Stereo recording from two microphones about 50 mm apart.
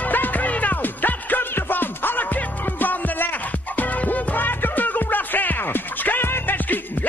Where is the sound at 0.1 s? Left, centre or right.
Left.